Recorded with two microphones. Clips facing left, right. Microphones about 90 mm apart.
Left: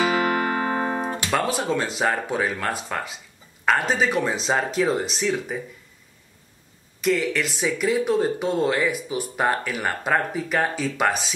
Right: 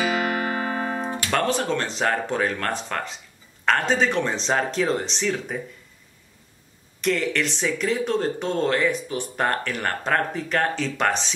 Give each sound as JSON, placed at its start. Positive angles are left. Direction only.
{"t": 0.7, "sound": "music", "side_deg": 30}
{"t": 1.3, "sound": "speech", "side_deg": 5}
{"t": 7.0, "sound": "speech", "side_deg": 0}